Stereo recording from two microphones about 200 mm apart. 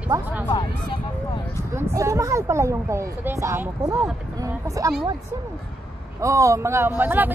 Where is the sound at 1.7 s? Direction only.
15° right (ahead or behind).